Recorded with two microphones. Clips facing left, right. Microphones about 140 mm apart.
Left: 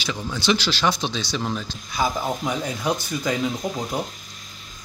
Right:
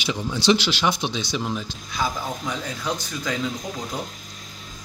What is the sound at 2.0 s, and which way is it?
Speech, 15° left (ahead or behind).